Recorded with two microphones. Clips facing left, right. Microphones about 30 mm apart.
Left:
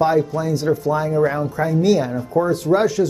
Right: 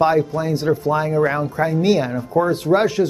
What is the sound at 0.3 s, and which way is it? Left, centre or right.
Speech, right.